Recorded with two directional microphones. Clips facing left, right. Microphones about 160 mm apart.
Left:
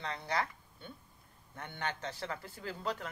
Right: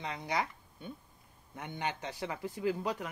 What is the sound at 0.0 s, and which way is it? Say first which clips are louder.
Speech: right 1 dB; 15° right (ahead or behind).